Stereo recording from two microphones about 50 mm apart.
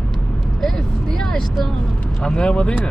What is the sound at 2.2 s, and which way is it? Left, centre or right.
Speech, centre.